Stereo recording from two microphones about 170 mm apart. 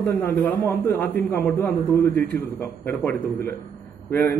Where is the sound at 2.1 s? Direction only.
5° left (ahead or behind).